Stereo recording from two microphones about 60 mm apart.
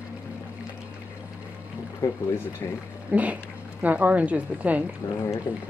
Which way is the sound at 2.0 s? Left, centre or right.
Left.